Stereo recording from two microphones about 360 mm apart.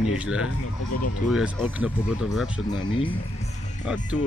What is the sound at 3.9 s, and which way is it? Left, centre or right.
Speech, centre.